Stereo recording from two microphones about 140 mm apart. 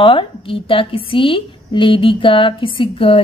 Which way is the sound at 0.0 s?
40° left (ahead or behind).